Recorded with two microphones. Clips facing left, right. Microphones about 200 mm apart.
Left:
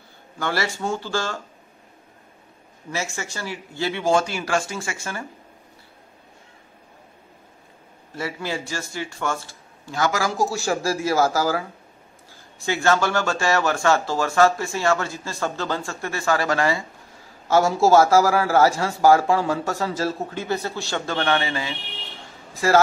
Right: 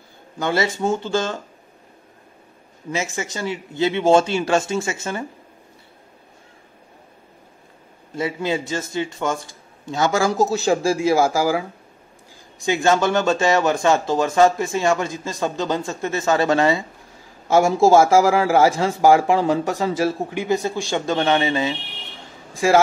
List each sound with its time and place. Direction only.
0.4 s speech: 20° right (ahead or behind)
2.9 s speech: 20° right (ahead or behind)
8.1 s speech: 20° right (ahead or behind)